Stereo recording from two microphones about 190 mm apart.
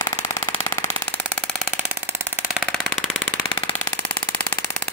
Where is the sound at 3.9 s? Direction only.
10° left (ahead or behind).